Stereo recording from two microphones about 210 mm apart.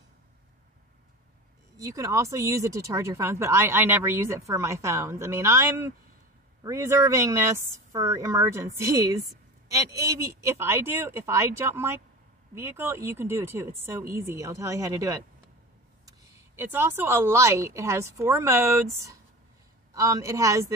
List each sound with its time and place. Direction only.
1.8 s speech: 15° right (ahead or behind)